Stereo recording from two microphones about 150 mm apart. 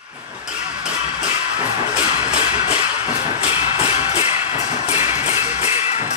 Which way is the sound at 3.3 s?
40° left (ahead or behind).